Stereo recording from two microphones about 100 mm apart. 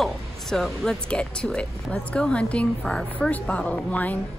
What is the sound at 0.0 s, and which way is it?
A woman's voice, 5° left (ahead or behind).